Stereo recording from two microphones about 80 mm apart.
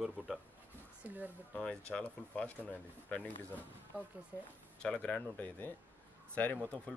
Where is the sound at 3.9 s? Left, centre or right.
Centre.